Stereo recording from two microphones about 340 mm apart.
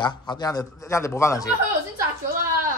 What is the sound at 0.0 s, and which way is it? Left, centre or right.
Speech, centre.